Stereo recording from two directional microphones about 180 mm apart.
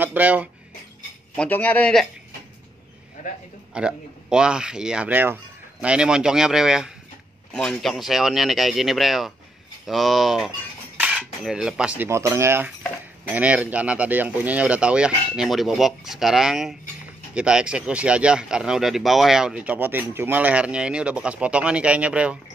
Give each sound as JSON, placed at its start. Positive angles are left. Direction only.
{"t": 0.0, "sound": "speech", "side_deg": -10}
{"t": 1.3, "sound": "speech", "side_deg": 5}
{"t": 3.2, "sound": "a man's voice", "side_deg": 40}
{"t": 3.7, "sound": "speech", "side_deg": -5}